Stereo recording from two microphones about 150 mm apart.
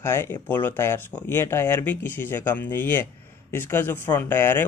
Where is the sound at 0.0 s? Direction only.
15° left (ahead or behind).